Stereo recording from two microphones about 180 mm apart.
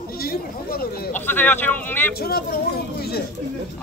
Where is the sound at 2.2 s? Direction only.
55° left (ahead or behind).